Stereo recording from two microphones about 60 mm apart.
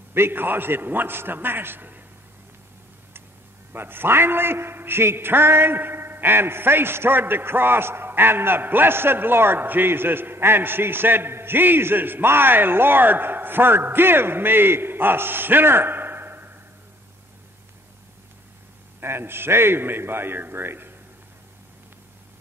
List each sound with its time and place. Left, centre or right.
0.1 s a man's voice: right
3.7 s a man's voice: right
18.9 s a man's voice: right